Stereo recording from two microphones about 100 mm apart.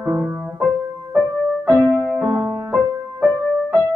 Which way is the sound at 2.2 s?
20° right (ahead or behind).